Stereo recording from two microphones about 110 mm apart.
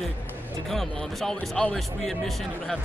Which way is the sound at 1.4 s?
15° left (ahead or behind).